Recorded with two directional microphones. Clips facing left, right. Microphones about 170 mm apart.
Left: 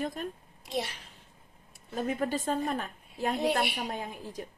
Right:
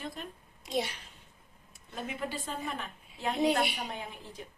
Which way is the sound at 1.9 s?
45° left (ahead or behind).